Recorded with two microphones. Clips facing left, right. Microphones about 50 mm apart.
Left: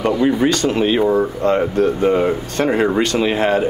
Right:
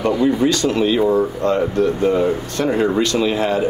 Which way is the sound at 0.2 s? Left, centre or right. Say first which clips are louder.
Left 1 dB; left.